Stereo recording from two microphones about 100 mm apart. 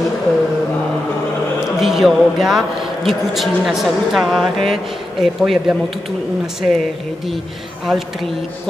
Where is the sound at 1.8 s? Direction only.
Centre (ahead or behind).